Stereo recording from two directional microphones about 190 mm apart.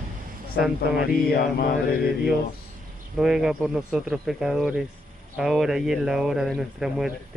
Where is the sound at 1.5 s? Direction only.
50° left (ahead or behind).